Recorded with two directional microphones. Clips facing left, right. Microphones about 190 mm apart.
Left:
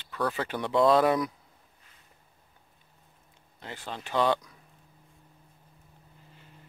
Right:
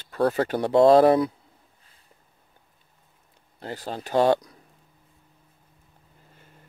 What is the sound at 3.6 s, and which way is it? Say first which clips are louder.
Speech: right 6 dB; 40° right (ahead or behind).